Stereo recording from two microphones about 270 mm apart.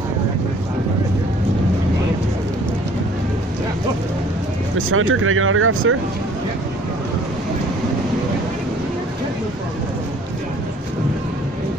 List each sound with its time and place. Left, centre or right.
4.7 s speech: right